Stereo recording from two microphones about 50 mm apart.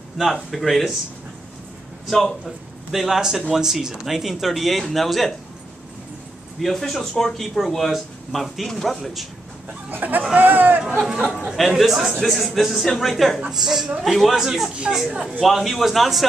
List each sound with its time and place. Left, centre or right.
0.2 s speech: centre
2.0 s speech: centre
2.9 s speech: centre
6.6 s speech: centre
9.8 s speech: right
10.3 s a sound: right
11.5 s speech: centre
13.5 s speech: centre